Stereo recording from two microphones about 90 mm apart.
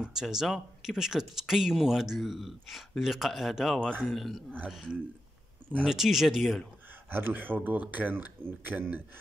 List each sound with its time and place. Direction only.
0.0 s speech: 5° right (ahead or behind)
7.1 s speech: 25° right (ahead or behind)